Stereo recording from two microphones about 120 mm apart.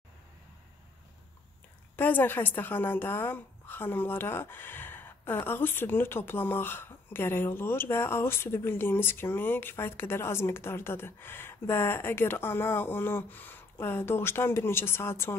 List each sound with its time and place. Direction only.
2.0 s a woman's voice: 15° left (ahead or behind)